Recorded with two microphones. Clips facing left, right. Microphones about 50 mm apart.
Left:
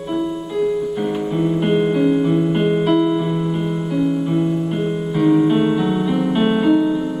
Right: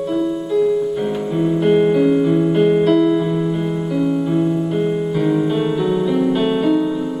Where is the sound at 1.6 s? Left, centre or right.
Centre.